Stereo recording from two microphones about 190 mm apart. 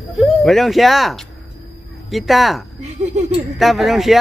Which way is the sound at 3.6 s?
Centre (ahead or behind).